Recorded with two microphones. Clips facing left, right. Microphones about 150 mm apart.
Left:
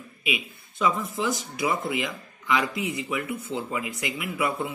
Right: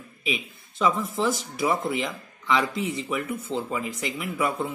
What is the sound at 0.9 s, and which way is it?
Speech, centre (ahead or behind).